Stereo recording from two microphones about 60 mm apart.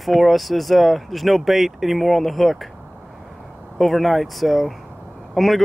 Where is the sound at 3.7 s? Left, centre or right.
Centre.